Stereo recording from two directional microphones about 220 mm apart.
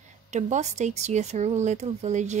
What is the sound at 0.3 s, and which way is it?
Speech, 30° right (ahead or behind).